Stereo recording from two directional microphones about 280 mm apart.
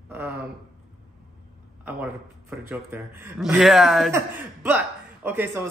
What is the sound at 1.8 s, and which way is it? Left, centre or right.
A man's voice, centre.